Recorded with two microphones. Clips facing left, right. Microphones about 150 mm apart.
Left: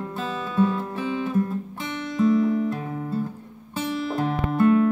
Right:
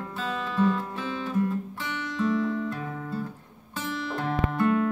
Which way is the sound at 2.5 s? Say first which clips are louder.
Left 6 dB; 20° left (ahead or behind).